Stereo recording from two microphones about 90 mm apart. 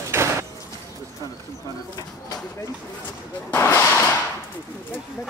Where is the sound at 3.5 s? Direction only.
30° left (ahead or behind).